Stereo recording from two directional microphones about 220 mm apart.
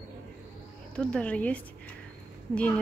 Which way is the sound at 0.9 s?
5° left (ahead or behind).